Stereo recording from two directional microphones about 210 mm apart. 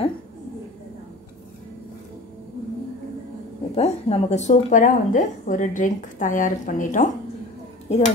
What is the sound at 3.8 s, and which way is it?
A woman's voice, 30° left (ahead or behind).